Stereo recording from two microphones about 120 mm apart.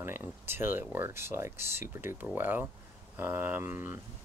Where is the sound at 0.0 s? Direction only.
20° right (ahead or behind).